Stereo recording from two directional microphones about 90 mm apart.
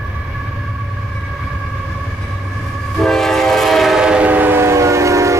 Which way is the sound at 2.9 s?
5° left (ahead or behind).